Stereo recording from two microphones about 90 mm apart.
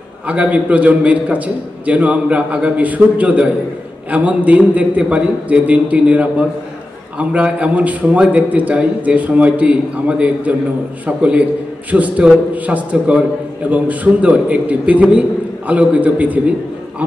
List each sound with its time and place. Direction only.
0.3 s a man's voice: 15° right (ahead or behind)